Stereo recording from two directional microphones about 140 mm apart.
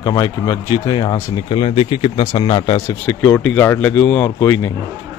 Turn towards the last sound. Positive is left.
turn(degrees=20)  # may be behind; listen again after turning